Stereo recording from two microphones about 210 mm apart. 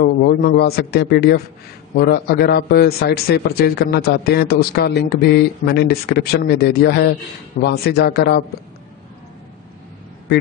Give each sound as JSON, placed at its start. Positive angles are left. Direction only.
{"t": 0.0, "sound": "a man's voice", "side_deg": 50}